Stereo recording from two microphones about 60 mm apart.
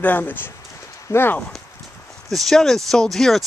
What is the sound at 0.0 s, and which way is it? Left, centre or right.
Speech, left.